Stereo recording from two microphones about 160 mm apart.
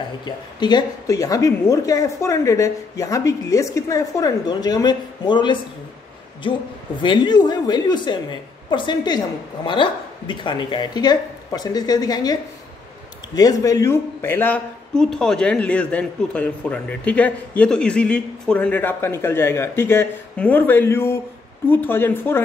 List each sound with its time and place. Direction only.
0.2 s a woman's voice: 25° left (ahead or behind)
7.0 s a woman's voice: 30° left (ahead or behind)